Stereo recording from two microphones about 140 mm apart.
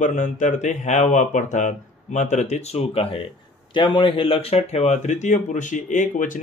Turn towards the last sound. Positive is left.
turn(degrees=65)  # may be behind; listen again after turning